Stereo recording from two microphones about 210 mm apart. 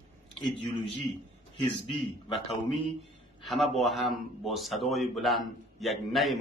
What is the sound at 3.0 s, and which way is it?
A man's voice, centre (ahead or behind).